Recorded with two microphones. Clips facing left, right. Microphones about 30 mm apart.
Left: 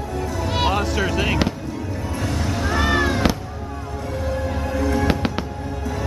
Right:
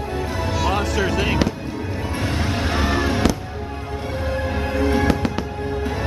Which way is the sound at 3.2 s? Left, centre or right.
Left.